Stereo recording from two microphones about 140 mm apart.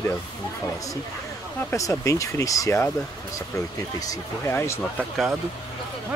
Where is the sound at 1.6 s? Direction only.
20° left (ahead or behind).